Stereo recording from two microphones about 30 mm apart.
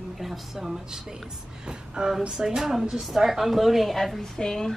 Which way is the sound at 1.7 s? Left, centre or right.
Right.